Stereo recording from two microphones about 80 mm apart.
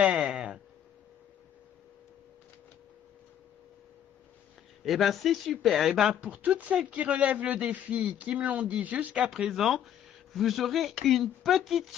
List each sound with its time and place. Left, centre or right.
0.0 s a sound: centre
4.8 s a man's voice: centre
9.3 s speech: centre